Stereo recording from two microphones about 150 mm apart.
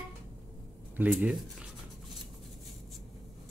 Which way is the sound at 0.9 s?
10° right (ahead or behind).